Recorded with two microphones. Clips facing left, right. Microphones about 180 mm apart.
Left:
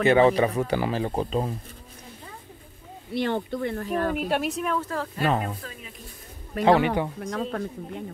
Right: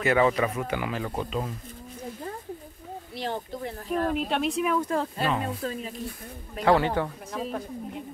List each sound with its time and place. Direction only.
0.0 s speech: 30° left (ahead or behind)
3.2 s speech: 65° left (ahead or behind)
4.3 s speech: 5° left (ahead or behind)
4.7 s speech: 20° right (ahead or behind)
6.6 s speech: 20° left (ahead or behind)
7.2 s speech: 80° left